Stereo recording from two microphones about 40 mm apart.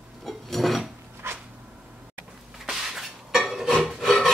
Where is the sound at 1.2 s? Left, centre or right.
Right.